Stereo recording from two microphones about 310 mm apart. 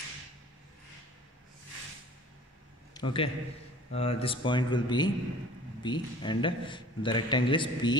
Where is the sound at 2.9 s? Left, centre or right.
Centre.